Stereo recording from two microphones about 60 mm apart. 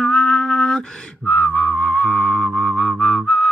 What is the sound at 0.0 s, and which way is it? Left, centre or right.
Music, centre.